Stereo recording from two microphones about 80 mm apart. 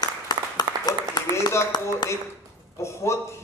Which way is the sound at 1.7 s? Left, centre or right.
Left.